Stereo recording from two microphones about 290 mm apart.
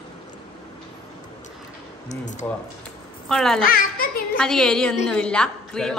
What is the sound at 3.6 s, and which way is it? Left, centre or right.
Speech, left.